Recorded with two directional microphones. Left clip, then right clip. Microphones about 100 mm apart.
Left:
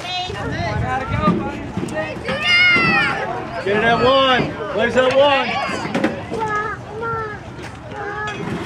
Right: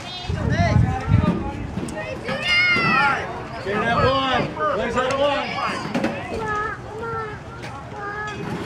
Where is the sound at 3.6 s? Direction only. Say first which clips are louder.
Left 5 dB; 45° left (ahead or behind).